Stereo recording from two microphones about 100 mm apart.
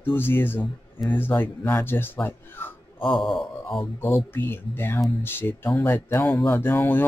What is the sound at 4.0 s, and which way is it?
Speech, 25° left (ahead or behind).